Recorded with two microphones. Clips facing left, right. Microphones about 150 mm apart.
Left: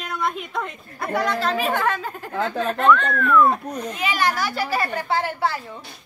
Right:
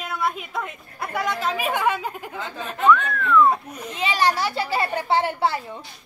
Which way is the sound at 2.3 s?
90° left.